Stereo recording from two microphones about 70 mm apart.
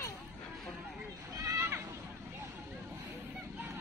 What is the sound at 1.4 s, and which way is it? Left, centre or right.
Neigh, right.